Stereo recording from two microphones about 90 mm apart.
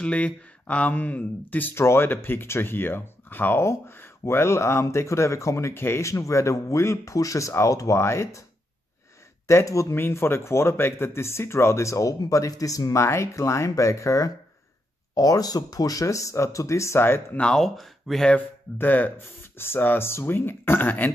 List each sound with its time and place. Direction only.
0.0 s a man's voice: 15° left (ahead or behind); by 8.5 s 35° left (ahead or behind)
9.5 s a man's voice: 35° left (ahead or behind)
17.4 s speech: 5° left (ahead or behind)
18.3 s speech: 20° left (ahead or behind)